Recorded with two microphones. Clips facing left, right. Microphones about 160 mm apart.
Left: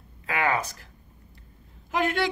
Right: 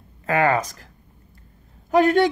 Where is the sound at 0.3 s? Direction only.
40° right (ahead or behind).